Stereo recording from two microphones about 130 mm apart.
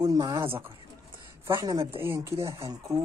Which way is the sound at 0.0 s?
30° right (ahead or behind).